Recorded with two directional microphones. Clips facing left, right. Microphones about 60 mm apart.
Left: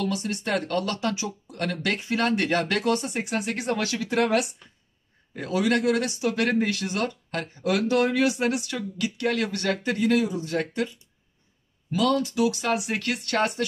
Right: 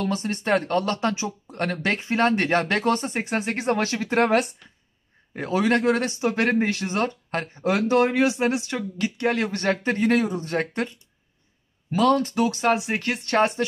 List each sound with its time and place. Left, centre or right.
0.0 s speech: right
11.9 s speech: right